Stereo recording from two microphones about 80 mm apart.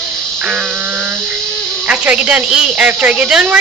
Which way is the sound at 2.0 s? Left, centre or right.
Centre.